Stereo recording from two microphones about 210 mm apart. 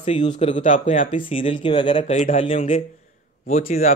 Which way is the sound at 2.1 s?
35° left (ahead or behind).